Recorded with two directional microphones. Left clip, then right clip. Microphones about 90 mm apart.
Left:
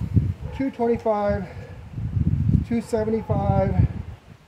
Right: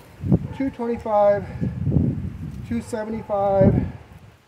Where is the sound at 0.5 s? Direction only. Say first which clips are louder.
Left 3 dB; 35° left (ahead or behind).